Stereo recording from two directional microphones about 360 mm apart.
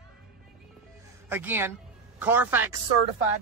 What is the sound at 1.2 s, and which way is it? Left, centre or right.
Speech, centre.